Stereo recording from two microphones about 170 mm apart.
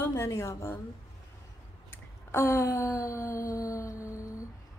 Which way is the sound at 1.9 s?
15° left (ahead or behind).